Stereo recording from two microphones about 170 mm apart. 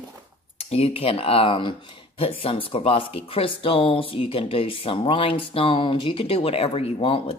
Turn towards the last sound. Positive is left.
turn(degrees=30)  # may be behind; listen again after turning